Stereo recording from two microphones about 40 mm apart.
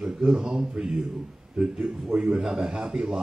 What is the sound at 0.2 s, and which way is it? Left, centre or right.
A man's voice, right.